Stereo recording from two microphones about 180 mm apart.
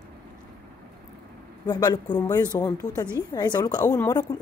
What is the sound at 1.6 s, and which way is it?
A woman's voice, 25° left (ahead or behind).